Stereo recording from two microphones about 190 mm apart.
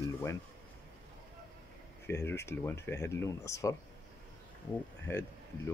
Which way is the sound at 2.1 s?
15° left (ahead or behind).